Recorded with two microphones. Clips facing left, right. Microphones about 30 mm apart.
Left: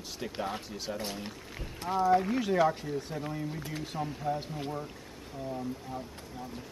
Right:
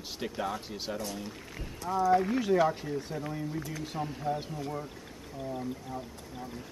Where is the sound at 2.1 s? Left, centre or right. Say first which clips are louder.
Right 1 dB; centre.